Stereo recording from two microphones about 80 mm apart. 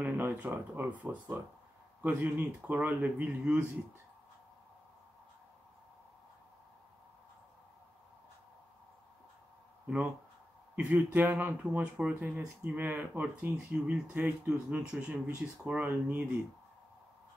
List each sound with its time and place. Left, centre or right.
0.0 s speech: centre
9.8 s speech: centre
11.6 s speech: centre
12.2 s speech: right
13.9 s speech: centre